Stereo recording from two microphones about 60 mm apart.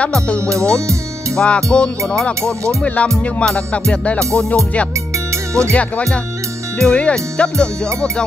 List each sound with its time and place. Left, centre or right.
1.3 s music: centre
5.7 s music: left